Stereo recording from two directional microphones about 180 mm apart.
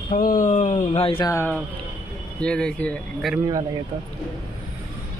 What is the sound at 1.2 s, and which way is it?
Speech, 15° left (ahead or behind).